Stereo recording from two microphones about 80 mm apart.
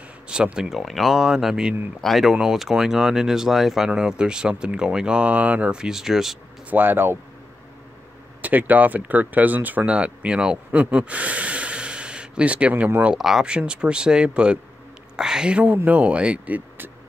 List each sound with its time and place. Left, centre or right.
0.3 s speech: centre
6.7 s speech: right
8.4 s speech: right
13.2 s speech: centre; by 16.9 s right